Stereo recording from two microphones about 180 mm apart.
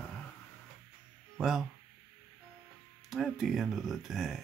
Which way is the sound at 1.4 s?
Centre (ahead or behind).